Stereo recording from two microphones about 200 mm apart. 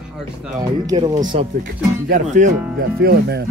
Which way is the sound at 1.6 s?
40° right (ahead or behind).